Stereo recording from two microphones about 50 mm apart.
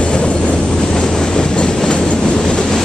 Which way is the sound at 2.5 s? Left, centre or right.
Centre.